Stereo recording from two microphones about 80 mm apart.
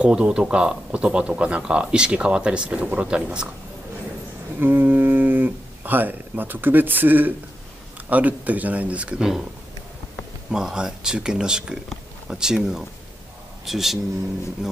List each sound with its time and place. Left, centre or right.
0.0 s speech: centre
4.6 s speech: right
10.5 s speech: centre